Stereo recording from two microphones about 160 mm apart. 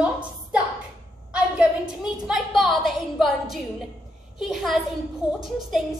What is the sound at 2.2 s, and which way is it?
A woman's voice, centre (ahead or behind).